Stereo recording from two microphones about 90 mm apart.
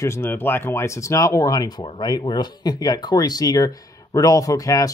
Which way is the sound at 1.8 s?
70° left (ahead or behind).